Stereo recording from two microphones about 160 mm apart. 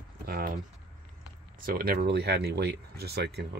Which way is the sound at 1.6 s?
70° right (ahead or behind).